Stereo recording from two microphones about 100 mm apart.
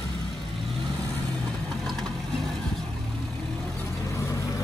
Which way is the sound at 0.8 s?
40° right (ahead or behind).